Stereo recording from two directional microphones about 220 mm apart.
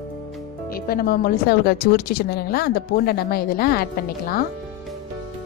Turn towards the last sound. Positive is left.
turn(degrees=45)  # may be behind; listen again after turning